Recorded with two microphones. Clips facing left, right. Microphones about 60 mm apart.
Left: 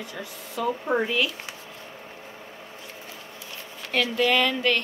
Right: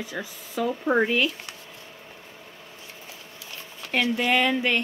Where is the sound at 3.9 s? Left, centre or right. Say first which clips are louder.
Even; centre.